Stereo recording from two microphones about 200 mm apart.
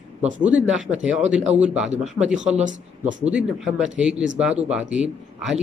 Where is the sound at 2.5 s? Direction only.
40° right (ahead or behind).